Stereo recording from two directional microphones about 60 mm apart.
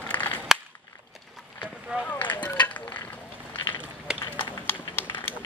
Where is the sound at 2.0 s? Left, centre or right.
Left.